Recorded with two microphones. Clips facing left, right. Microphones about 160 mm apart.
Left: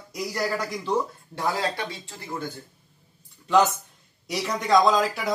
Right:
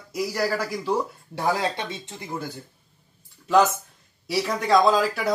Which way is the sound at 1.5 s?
20° right (ahead or behind).